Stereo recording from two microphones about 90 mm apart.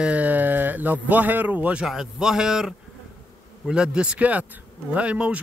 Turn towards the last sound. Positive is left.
turn(degrees=-15)  # may be behind; listen again after turning